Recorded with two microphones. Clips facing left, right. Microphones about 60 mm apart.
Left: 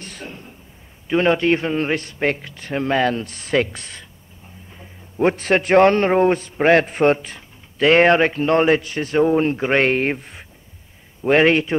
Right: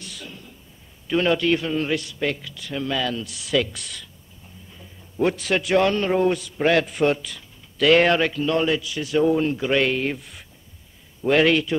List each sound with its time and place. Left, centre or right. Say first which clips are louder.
0.0 s a sound: left 4 dB; left
1.0 s a man's voice: left 3 dB; left
5.2 s a man's voice: left 4 dB; left